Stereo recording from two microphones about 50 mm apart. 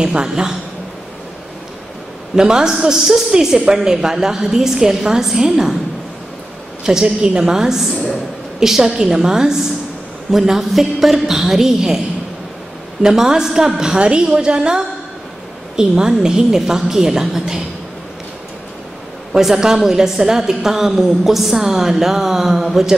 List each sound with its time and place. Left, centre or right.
0.0 s a woman's voice: centre
2.3 s a woman's voice: centre
6.8 s a woman's voice: centre
13.0 s a woman's voice: centre
19.3 s a woman's voice: centre
22.7 s mantra: centre